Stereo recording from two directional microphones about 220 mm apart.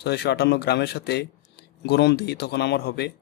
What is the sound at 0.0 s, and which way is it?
Speech, 50° left (ahead or behind).